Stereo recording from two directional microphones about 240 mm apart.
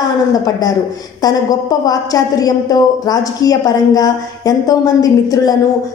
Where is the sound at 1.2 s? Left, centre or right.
Centre.